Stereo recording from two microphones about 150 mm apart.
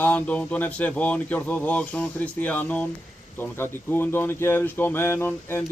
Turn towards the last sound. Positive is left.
turn(degrees=15)  # may be behind; listen again after turning